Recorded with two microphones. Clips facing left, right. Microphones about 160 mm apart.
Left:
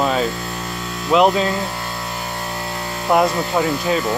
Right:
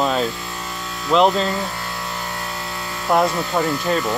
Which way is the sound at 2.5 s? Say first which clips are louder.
Left 3 dB; 30° left (ahead or behind).